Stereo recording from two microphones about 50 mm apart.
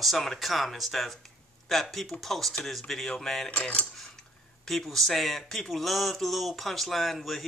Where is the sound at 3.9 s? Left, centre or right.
Centre.